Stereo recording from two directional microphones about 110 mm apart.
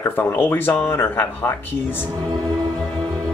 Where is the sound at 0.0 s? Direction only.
20° left (ahead or behind).